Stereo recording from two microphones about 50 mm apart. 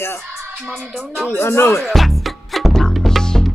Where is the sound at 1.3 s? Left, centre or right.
Left.